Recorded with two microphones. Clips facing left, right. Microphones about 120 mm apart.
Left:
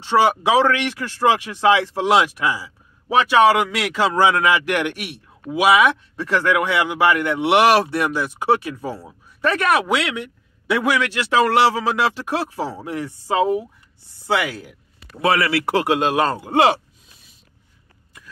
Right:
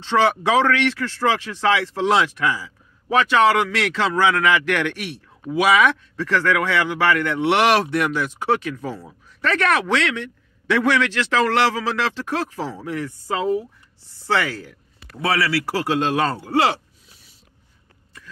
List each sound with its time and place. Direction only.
0.0 s speech: 10° left (ahead or behind)